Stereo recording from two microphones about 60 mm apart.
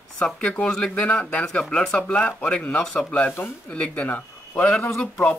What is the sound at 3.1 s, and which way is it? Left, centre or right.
A man's voice, left.